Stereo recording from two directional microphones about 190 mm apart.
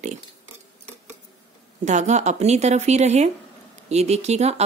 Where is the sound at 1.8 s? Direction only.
40° right (ahead or behind).